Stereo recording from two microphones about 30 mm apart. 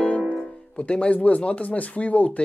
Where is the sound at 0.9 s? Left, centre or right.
Left.